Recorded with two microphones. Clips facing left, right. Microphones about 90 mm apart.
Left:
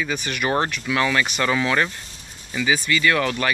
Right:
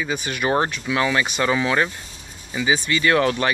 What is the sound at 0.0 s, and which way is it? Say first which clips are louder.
Speech: right 1 dB; 20° right (ahead or behind).